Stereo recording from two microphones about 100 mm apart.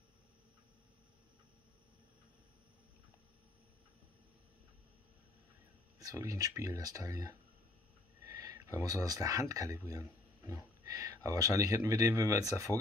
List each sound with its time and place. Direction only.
5.9 s speech: 35° right (ahead or behind)